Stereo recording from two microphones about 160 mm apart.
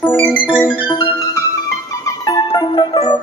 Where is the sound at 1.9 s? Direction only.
20° left (ahead or behind).